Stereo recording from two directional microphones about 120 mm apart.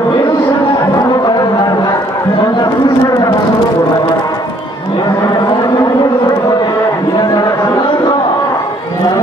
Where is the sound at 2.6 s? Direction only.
30° left (ahead or behind).